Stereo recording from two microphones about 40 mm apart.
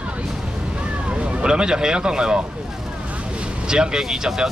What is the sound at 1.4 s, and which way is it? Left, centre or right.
Speech, centre.